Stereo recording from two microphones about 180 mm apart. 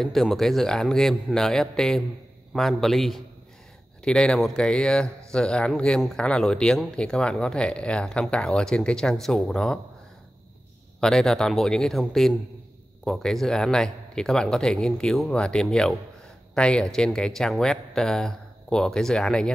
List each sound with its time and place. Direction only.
0.0 s speech: centre (ahead or behind)
11.0 s speech: 5° left (ahead or behind)